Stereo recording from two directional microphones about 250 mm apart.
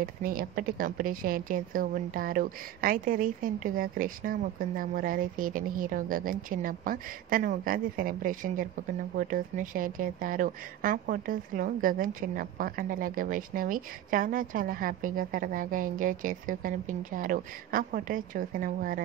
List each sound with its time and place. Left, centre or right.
0.2 s a woman's voice: right